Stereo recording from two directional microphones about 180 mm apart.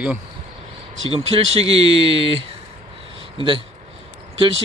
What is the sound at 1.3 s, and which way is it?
Speech, 30° right (ahead or behind).